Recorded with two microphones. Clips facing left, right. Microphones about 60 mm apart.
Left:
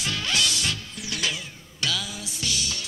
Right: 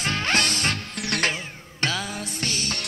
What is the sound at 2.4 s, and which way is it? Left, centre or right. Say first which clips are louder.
Music: even; right.